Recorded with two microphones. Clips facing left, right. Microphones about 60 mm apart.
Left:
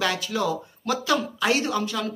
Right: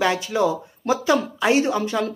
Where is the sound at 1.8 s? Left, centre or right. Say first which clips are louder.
Right 4 dB; right.